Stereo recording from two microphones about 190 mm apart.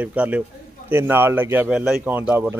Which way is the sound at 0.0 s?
10° right (ahead or behind).